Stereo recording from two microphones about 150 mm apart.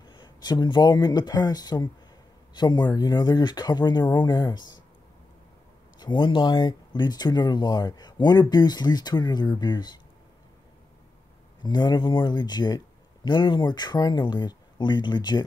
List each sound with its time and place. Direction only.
0.0 s speech: 30° left (ahead or behind)
5.9 s speech: 30° left (ahead or behind)
11.6 s speech: 30° left (ahead or behind)